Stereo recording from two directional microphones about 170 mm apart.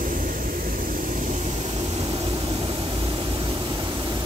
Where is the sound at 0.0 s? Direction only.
55° right (ahead or behind).